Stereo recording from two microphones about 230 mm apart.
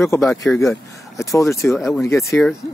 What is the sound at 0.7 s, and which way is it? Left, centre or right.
Speech, centre.